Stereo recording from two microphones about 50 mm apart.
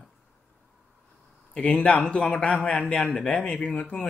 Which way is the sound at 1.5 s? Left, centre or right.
Centre.